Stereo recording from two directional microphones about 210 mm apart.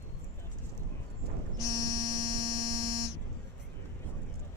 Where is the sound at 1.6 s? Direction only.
20° right (ahead or behind).